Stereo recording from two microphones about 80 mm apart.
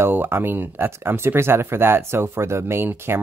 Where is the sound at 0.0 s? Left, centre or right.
Right.